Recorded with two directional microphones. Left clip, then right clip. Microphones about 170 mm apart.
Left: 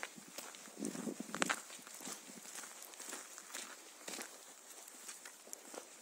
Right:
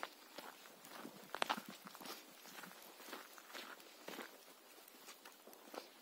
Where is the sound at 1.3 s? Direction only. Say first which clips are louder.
Left 2 dB; 45° left (ahead or behind).